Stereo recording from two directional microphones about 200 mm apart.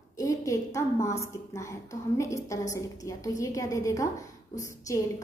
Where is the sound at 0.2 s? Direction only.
15° left (ahead or behind).